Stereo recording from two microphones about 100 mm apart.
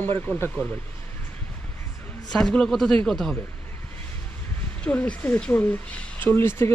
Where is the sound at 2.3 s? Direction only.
5° left (ahead or behind).